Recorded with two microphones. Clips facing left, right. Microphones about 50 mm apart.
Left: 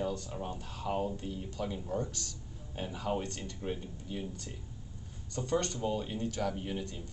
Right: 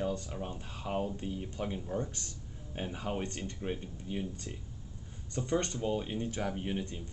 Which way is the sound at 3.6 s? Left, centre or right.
Right.